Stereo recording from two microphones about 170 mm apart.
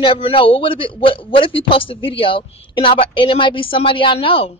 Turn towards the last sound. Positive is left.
turn(degrees=30)  # may be behind; listen again after turning